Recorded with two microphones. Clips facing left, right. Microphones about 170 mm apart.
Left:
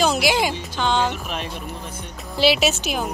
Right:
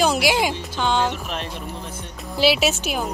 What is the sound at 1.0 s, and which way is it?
Speech, 5° left (ahead or behind).